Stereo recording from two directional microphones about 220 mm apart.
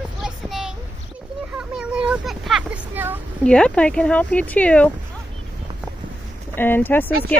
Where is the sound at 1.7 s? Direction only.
5° right (ahead or behind).